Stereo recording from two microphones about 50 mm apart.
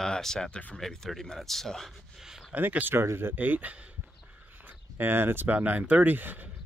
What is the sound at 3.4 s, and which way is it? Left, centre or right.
Speech, right.